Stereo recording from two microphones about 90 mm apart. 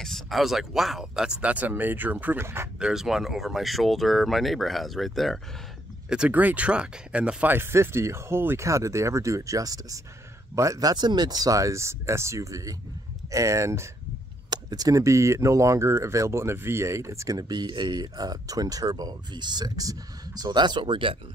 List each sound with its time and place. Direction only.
0.0 s speech: centre (ahead or behind); by 2.4 s 20° right (ahead or behind)
2.4 s speech: 30° right (ahead or behind)
2.8 s speech: 5° right (ahead or behind)
6.0 s speech: 10° right (ahead or behind)
7.5 s speech: 30° right (ahead or behind)
14.5 s speech: 45° right (ahead or behind); by 21.2 s 70° right (ahead or behind)